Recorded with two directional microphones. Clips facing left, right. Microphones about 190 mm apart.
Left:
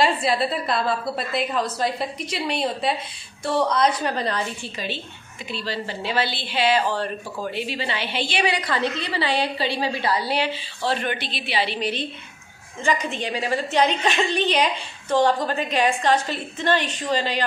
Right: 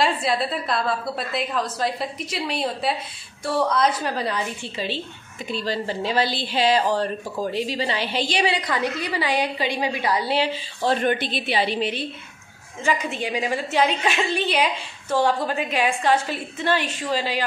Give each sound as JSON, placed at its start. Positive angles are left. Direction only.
{"t": 0.0, "sound": "a woman's voice", "side_deg": 0}
{"t": 4.7, "sound": "a woman's voice", "side_deg": -35}
{"t": 5.5, "sound": "a woman's voice", "side_deg": -45}
{"t": 8.5, "sound": "a woman's voice", "side_deg": -15}
{"t": 10.5, "sound": "a woman's voice", "side_deg": -45}
{"t": 12.8, "sound": "a woman's voice", "side_deg": -5}